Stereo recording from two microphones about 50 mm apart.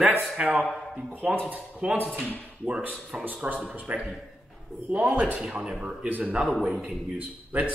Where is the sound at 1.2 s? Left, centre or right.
Centre.